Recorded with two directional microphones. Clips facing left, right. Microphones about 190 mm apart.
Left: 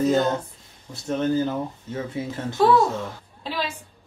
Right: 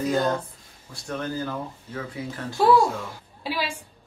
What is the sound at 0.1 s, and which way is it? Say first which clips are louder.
Speech: left 3 dB; 25° left (ahead or behind).